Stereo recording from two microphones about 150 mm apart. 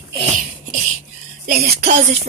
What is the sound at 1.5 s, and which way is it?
Speech, 90° right.